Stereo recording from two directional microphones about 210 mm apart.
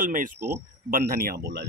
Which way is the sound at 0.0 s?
40° right (ahead or behind).